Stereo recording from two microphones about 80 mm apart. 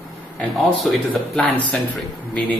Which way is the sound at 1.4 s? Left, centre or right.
Centre.